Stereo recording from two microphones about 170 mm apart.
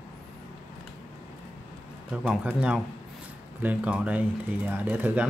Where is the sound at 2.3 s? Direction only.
5° right (ahead or behind).